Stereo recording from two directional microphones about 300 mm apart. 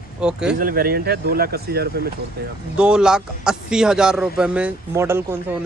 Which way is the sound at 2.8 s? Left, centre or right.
Centre.